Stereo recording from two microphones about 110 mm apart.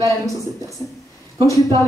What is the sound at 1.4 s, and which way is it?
Speech, 35° right (ahead or behind).